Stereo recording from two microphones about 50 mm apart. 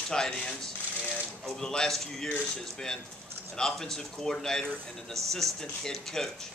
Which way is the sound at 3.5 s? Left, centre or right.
Centre.